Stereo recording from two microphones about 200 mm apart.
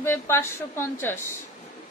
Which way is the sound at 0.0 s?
10° left (ahead or behind).